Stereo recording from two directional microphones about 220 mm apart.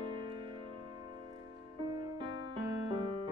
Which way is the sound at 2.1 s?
20° right (ahead or behind).